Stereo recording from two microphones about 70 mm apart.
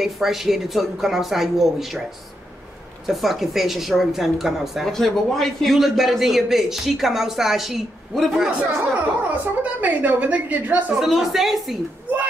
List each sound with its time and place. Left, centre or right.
0.0 s a woman's voice: centre
3.1 s a woman's voice: centre
8.5 s a woman's voice: centre
11.0 s a woman's voice: centre